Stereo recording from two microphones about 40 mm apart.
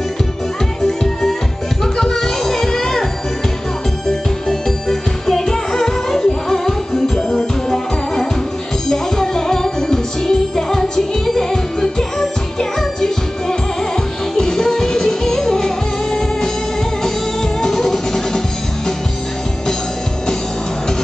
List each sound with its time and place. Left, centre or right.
1.8 s music: centre
4.5 s music: centre